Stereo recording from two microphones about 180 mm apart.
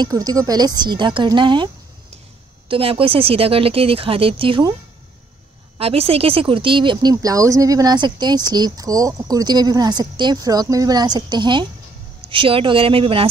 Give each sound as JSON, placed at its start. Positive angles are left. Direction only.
{"t": 0.0, "sound": "speech", "side_deg": -20}
{"t": 2.7, "sound": "speech", "side_deg": -30}
{"t": 5.8, "sound": "speech", "side_deg": -30}